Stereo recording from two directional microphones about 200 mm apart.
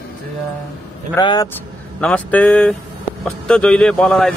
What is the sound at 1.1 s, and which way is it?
Speech, 20° left (ahead or behind).